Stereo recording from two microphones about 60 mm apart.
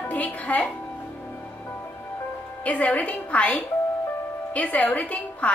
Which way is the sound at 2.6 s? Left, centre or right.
Left.